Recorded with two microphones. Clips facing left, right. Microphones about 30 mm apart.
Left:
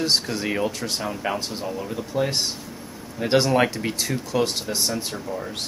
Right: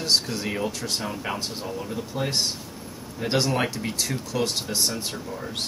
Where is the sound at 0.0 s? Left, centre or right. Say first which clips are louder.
Left 1 dB; centre.